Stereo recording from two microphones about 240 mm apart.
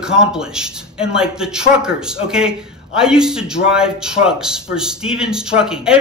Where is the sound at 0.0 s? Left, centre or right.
Centre.